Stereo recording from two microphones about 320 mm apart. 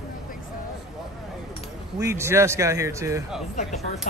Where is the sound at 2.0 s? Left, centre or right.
Centre.